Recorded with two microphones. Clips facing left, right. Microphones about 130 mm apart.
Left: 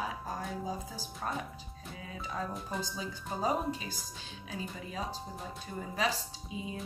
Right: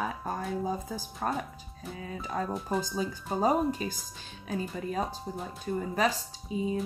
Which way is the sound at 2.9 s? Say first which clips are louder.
Right 7 dB; 45° right (ahead or behind).